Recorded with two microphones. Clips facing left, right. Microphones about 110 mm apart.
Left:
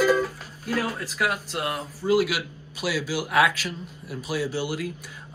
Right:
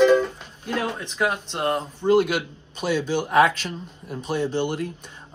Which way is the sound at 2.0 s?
25° right (ahead or behind).